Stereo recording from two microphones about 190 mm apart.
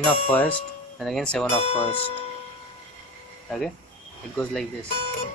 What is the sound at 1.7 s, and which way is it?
Speech, 30° left (ahead or behind).